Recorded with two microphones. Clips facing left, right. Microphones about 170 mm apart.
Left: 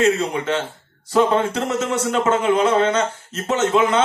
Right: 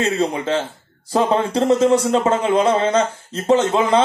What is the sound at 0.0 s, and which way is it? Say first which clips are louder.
A man's voice: left 1 dB; 30° right (ahead or behind).